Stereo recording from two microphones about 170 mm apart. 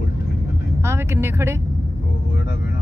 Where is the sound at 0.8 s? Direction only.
15° right (ahead or behind).